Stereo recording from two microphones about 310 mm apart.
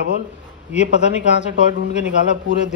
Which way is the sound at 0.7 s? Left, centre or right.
Left.